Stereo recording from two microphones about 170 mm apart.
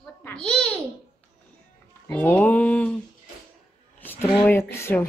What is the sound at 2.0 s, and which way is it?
Speech, 10° left (ahead or behind).